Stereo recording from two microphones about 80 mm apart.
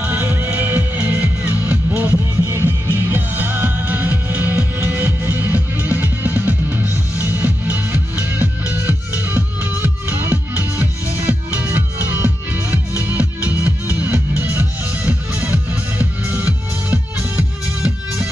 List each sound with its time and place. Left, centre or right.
0.0 s music: right
2.4 s music: right
17.8 s music: centre